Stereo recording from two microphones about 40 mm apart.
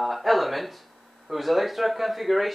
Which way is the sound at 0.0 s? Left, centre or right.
Centre.